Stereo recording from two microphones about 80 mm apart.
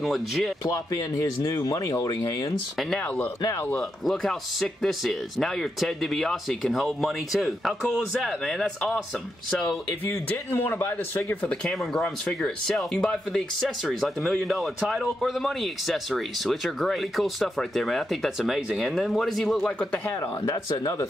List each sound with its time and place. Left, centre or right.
0.0 s speech: centre
0.7 s speech: left
3.7 s speech: centre
10.0 s speech: left
11.4 s speech: centre
20.2 s speech: left